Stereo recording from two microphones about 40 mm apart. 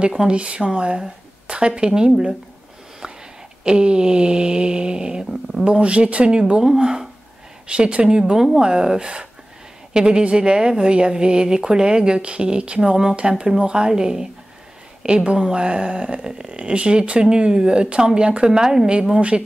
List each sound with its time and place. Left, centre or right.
0.0 s speech: right
3.6 s speech: right
7.6 s speech: right
15.0 s speech: right
19.1 s speech: right